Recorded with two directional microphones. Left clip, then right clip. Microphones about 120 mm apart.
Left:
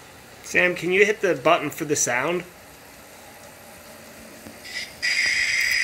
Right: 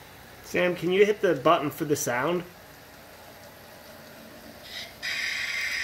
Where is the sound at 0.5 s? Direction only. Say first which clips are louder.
Left 5 dB; 15° right (ahead or behind).